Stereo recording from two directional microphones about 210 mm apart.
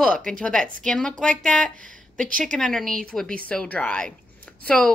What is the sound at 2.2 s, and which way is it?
Speech, 40° right (ahead or behind).